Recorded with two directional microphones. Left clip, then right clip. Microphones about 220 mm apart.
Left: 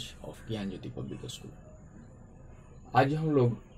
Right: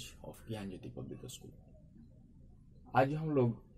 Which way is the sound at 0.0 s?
20° right (ahead or behind).